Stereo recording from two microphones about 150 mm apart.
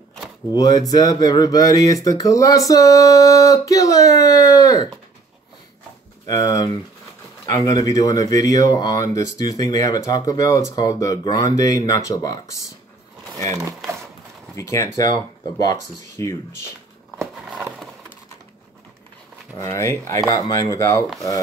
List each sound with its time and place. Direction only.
0.5 s speech: 25° left (ahead or behind)
6.2 s speech: 25° left (ahead or behind)
14.5 s speech: 20° left (ahead or behind)
17.2 s a sound: 5° right (ahead or behind)
19.6 s speech: 20° left (ahead or behind)